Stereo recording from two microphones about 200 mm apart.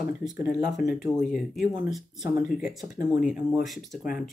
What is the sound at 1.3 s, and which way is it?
Speech, centre (ahead or behind).